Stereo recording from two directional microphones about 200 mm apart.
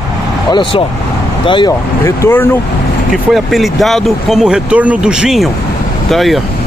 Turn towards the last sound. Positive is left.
turn(degrees=0)  # may be behind; listen again after turning